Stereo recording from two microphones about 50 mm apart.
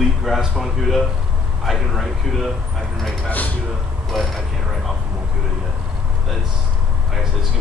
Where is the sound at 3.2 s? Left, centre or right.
Left.